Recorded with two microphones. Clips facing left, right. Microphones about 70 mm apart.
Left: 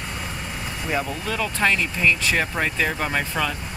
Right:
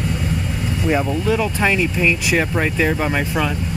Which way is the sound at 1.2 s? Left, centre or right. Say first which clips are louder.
Right 5 dB; centre.